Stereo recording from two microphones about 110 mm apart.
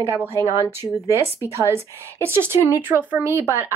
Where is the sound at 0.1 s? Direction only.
25° right (ahead or behind).